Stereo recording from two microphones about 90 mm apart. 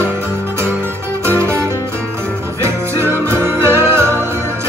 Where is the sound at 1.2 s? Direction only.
30° right (ahead or behind).